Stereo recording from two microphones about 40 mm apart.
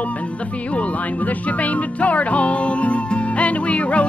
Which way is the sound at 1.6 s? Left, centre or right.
Left.